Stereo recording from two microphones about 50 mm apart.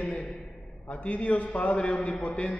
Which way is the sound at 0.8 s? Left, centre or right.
Left.